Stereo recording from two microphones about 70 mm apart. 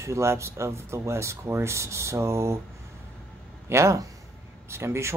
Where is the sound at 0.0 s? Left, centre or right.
Right.